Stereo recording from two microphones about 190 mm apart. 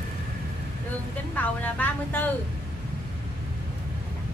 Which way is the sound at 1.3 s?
10° left (ahead or behind).